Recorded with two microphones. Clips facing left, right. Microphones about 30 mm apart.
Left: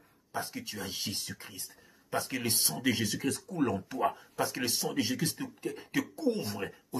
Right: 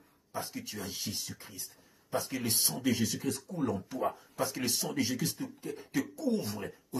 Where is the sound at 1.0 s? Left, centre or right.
Left.